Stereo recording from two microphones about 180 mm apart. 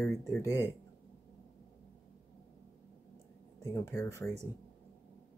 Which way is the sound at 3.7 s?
15° left (ahead or behind).